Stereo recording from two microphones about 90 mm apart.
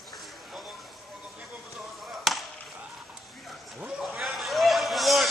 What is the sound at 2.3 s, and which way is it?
Chop, centre (ahead or behind).